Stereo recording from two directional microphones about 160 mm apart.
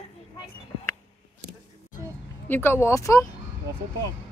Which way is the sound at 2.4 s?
15° left (ahead or behind).